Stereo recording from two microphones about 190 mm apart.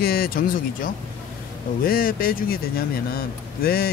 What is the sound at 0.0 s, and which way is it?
Speech, 50° left (ahead or behind).